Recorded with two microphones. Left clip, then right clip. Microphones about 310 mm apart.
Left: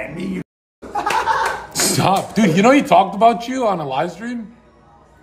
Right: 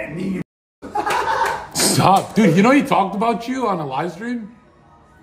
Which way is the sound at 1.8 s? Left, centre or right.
Centre.